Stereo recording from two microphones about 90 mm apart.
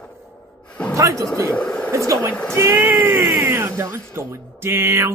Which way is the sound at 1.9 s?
35° right (ahead or behind).